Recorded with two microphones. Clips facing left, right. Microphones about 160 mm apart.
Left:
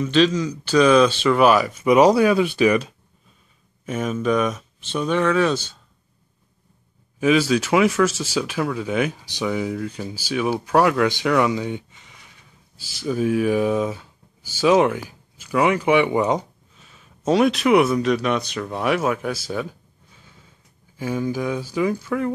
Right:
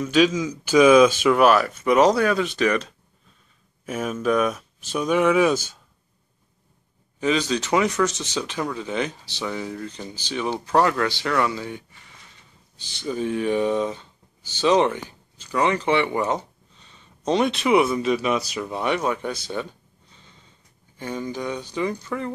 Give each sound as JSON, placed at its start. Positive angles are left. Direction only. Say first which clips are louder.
{"t": 0.0, "sound": "speech", "louder": "left 1 dB", "side_deg": -5}
{"t": 3.8, "sound": "speech", "louder": "left 2 dB", "side_deg": 0}
{"t": 7.2, "sound": "speech", "louder": "left 5 dB", "side_deg": 10}
{"t": 12.8, "sound": "speech", "louder": "left 4 dB", "side_deg": 5}